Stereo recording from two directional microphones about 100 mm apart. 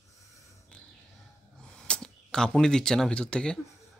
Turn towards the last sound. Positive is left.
turn(degrees=10)  # may be behind; listen again after turning